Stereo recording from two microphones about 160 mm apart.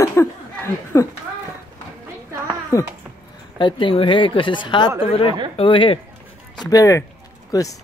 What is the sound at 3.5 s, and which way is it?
Speech, 30° left (ahead or behind).